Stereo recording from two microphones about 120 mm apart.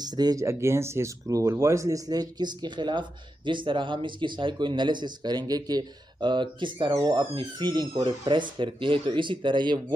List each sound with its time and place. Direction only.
0.0 s speech: 35° right (ahead or behind)